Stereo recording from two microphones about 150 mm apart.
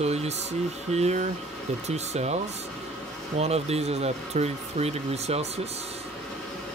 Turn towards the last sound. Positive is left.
turn(degrees=-45)  # may be behind; listen again after turning